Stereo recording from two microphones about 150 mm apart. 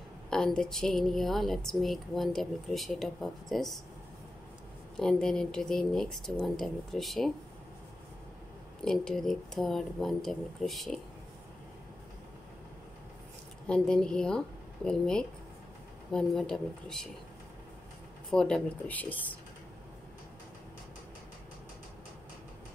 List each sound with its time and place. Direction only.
0.3 s speech: 5° left (ahead or behind)
4.9 s speech: 5° left (ahead or behind)
8.8 s speech: 5° left (ahead or behind)
13.7 s speech: 5° left (ahead or behind)
18.3 s speech: 5° left (ahead or behind)